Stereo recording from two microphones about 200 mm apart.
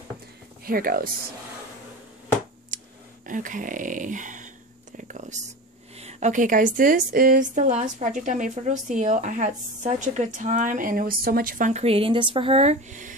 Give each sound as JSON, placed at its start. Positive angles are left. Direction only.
{"t": 0.7, "sound": "speech", "side_deg": -45}
{"t": 2.7, "sound": "a sound", "side_deg": -40}
{"t": 3.3, "sound": "a woman's voice", "side_deg": -40}
{"t": 4.9, "sound": "whispering", "side_deg": -40}
{"t": 5.9, "sound": "a woman's voice", "side_deg": -35}